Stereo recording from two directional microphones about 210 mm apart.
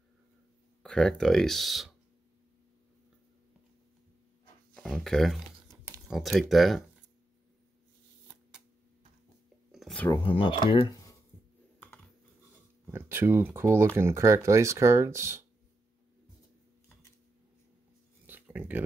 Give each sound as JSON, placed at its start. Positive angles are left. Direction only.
{"t": 0.8, "sound": "speech", "side_deg": 5}
{"t": 4.7, "sound": "speech", "side_deg": 5}
{"t": 8.3, "sound": "shuffling cards", "side_deg": -5}
{"t": 9.7, "sound": "a sound", "side_deg": 0}
{"t": 10.2, "sound": "speech", "side_deg": 25}
{"t": 11.8, "sound": "computer keyboard", "side_deg": 5}
{"t": 12.8, "sound": "speech", "side_deg": -10}
{"t": 18.2, "sound": "a sound", "side_deg": -10}